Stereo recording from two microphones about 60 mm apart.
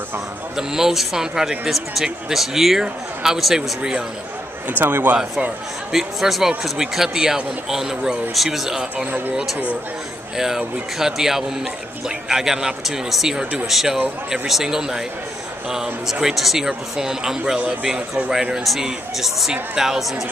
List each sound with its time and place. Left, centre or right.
0.6 s speech: centre
4.6 s a man's voice: right
5.9 s speech: centre
8.9 s speech: right
10.3 s speech: centre